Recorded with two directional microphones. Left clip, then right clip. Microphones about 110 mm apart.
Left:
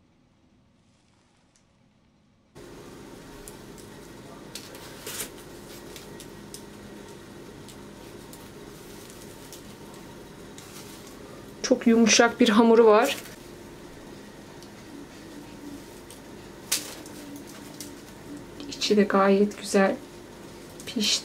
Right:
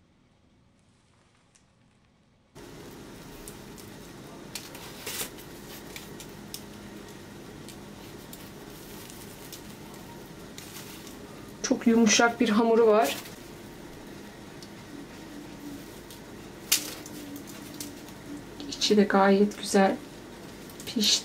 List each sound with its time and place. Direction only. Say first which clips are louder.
11.6 s speech: left 3 dB; 10° left (ahead or behind)
12.4 s speech: left 4 dB; 35° left (ahead or behind)
18.7 s speech: left 1 dB; centre (ahead or behind)
20.8 s a sound: right 1 dB; centre (ahead or behind)